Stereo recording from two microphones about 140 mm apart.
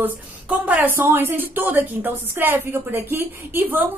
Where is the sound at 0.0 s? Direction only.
10° right (ahead or behind).